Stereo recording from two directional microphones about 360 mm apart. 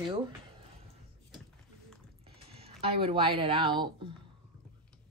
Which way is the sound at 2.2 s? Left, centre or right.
Centre.